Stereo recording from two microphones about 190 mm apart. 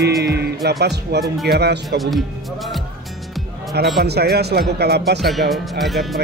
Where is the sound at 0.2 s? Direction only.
60° right (ahead or behind).